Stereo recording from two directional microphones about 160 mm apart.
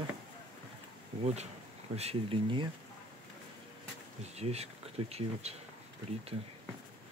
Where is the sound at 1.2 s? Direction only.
45° right (ahead or behind).